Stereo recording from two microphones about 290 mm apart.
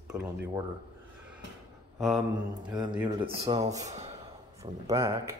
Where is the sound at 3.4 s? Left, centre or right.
Right.